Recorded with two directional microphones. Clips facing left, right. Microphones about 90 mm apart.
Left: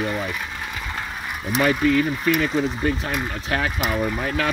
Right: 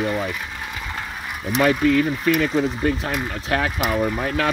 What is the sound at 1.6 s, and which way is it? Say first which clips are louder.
Speech: right 1 dB; 65° right (ahead or behind).